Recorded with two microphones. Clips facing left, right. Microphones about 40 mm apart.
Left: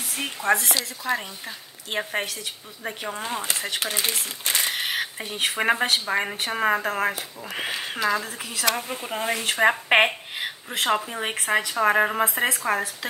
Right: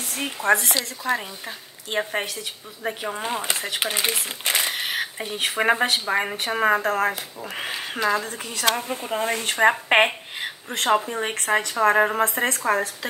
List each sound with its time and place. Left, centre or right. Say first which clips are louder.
0.1 s speech: right 2 dB; centre
3.8 s speech: right 5 dB; centre
4.6 s speech: even; centre